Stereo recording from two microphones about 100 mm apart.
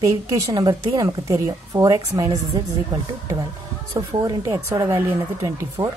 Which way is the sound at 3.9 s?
35° right (ahead or behind).